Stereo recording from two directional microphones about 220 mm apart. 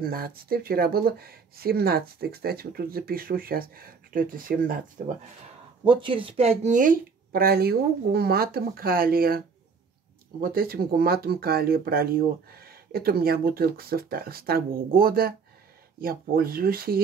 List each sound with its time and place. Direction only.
0.0 s speech: 40° right (ahead or behind)
5.9 s speech: 25° right (ahead or behind); by 9.4 s 40° right (ahead or behind)
10.4 s speech: 45° right (ahead or behind)